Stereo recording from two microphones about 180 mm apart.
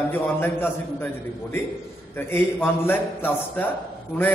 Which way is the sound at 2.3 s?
10° left (ahead or behind).